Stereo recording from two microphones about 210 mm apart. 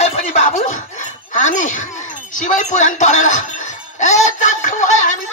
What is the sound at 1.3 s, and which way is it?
Speech, 35° left (ahead or behind).